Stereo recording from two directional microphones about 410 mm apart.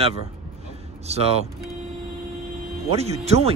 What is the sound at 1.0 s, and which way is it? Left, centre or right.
Speech, centre.